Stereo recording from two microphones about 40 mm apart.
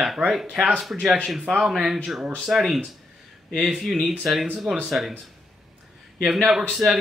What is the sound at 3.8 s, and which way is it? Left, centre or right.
Speech, centre.